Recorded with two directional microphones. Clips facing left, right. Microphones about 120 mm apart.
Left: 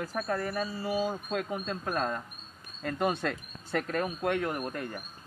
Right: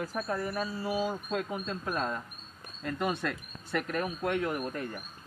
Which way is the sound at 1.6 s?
45° left (ahead or behind).